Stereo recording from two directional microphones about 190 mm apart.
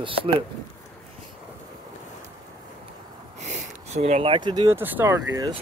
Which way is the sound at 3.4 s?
35° right (ahead or behind).